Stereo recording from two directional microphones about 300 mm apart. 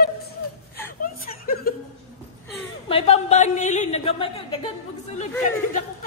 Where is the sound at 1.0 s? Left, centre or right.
Left.